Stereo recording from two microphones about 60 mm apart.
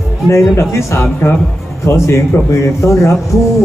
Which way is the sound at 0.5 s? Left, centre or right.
Left.